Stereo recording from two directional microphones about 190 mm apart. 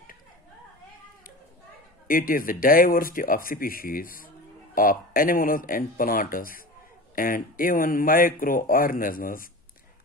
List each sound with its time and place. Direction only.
2.0 s speech: 50° left (ahead or behind)